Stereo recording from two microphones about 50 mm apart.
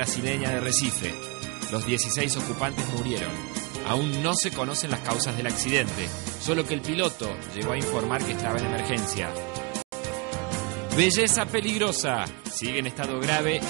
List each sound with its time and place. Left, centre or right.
0.0 s speech: right
10.5 s speech: right